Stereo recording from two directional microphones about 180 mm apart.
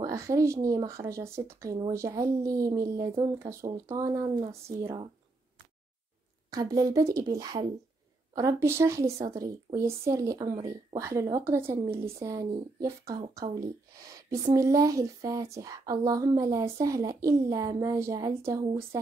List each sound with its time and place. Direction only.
0.0 s speech: 15° right (ahead or behind)
6.5 s a woman's voice: 20° right (ahead or behind)